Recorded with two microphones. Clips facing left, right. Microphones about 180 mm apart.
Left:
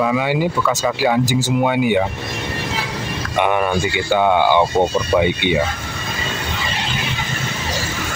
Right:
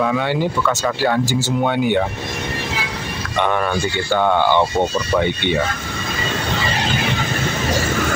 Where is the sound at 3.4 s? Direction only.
10° left (ahead or behind).